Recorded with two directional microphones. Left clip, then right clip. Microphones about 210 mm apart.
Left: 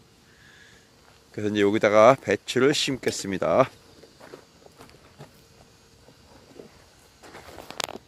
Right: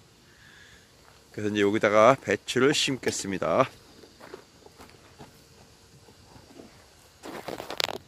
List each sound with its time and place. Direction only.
1.3 s speech: 15° left (ahead or behind)